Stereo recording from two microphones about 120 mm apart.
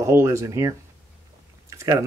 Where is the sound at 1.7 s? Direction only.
25° right (ahead or behind).